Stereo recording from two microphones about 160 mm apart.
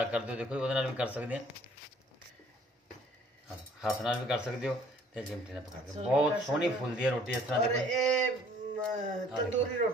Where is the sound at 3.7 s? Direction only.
Centre (ahead or behind).